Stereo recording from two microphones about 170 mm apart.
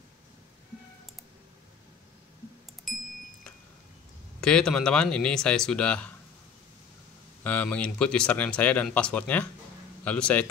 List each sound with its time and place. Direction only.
2.9 s clock: centre (ahead or behind)
4.4 s speech: 5° left (ahead or behind)
7.4 s speech: 10° left (ahead or behind)